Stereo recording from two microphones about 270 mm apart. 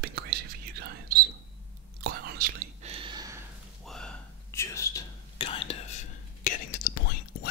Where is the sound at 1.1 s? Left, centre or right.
Right.